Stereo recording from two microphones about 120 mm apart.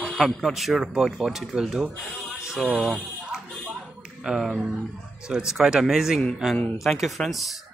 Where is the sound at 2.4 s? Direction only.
5° right (ahead or behind).